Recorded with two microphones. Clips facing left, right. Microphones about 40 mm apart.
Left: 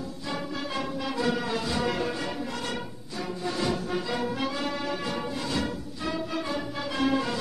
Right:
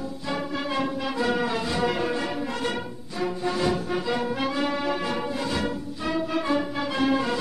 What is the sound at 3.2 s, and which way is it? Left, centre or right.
Music, right.